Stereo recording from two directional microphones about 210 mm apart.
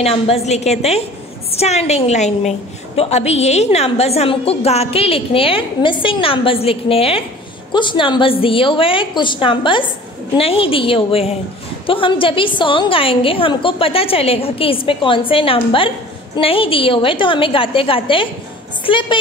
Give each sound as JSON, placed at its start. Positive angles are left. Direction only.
{"t": 0.0, "sound": "a woman's voice", "side_deg": 30}